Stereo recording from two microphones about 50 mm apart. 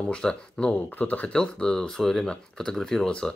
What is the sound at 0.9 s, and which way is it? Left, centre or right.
Speech, left.